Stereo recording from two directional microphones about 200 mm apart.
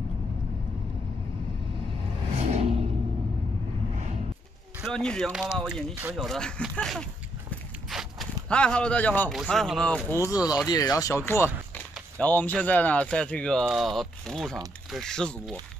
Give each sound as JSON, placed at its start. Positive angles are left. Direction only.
{"t": 2.5, "sound": "a sound", "side_deg": -30}
{"t": 4.8, "sound": "speech", "side_deg": 5}
{"t": 7.9, "sound": "zipper", "side_deg": 0}
{"t": 9.4, "sound": "speech", "side_deg": 0}
{"t": 10.3, "sound": "speech", "side_deg": 20}